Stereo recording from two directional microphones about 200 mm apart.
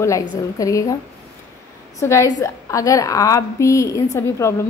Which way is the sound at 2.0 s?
15° left (ahead or behind).